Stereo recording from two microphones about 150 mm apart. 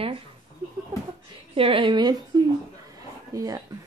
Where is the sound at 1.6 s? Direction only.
35° right (ahead or behind).